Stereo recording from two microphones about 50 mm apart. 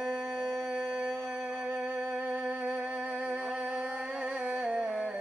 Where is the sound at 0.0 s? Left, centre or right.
Centre.